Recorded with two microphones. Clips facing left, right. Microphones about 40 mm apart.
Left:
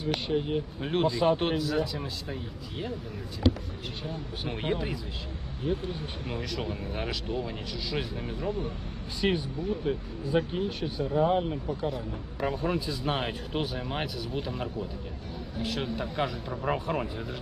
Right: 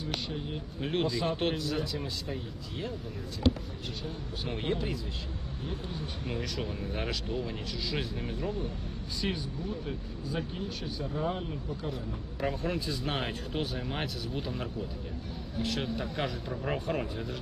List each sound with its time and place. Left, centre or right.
0.3 s speech: left
0.7 s speech: centre
4.0 s speech: centre
6.2 s speech: centre
9.2 s speech: left
11.9 s speech: centre